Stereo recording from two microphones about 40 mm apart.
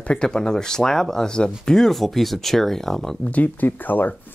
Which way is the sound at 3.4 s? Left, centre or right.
Left.